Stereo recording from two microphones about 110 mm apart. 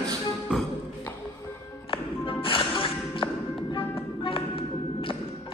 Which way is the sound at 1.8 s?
50° left (ahead or behind).